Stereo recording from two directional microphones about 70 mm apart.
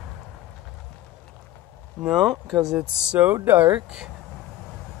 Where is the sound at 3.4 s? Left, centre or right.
Right.